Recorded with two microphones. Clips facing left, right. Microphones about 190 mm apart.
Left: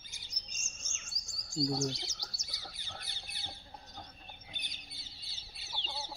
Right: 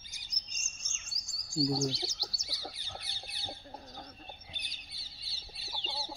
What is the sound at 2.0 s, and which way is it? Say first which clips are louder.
Bird: right 7 dB; 35° right (ahead or behind).